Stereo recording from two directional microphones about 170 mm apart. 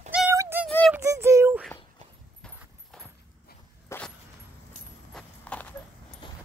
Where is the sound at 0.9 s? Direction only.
15° right (ahead or behind).